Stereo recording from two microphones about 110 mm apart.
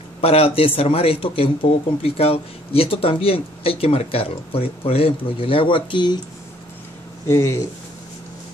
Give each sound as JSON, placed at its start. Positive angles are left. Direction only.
{"t": 0.2, "sound": "speech", "side_deg": 65}
{"t": 7.2, "sound": "speech", "side_deg": 25}